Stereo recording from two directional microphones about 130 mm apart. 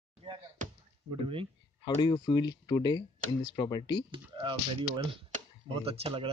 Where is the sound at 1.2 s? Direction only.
45° right (ahead or behind).